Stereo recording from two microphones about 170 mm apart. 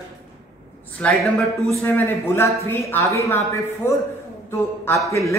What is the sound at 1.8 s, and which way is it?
A man's voice, 10° left (ahead or behind).